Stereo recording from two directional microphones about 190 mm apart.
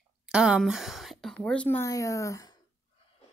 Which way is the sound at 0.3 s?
5° right (ahead or behind).